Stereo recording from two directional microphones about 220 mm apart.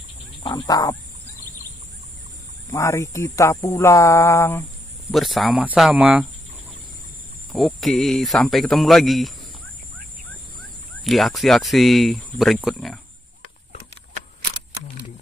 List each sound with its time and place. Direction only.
0.4 s speech: 15° left (ahead or behind)
2.7 s speech: 15° left (ahead or behind)
5.1 s speech: centre (ahead or behind)
7.5 s speech: centre (ahead or behind)
10.6 s speech: centre (ahead or behind)